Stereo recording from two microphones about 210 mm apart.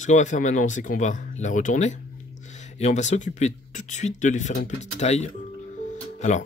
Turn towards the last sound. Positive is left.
turn(degrees=35)  # may be behind; listen again after turning